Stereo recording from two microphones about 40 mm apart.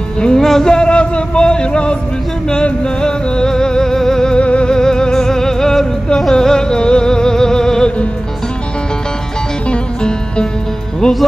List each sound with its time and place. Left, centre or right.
0.2 s a sound: centre
3.0 s music: centre
4.4 s music: left
9.7 s music: left